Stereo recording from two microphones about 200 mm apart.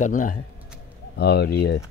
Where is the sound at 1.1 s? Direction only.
55° left (ahead or behind).